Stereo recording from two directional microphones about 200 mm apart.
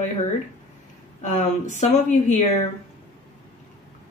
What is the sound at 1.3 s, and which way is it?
A woman's voice, 35° left (ahead or behind).